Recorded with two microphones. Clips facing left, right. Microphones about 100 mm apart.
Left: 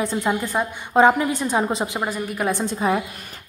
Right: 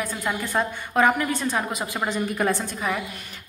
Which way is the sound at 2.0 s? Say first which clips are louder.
Even; 10° left (ahead or behind).